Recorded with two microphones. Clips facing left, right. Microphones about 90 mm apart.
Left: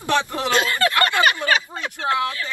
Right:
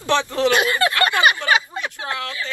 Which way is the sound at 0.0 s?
20° left (ahead or behind).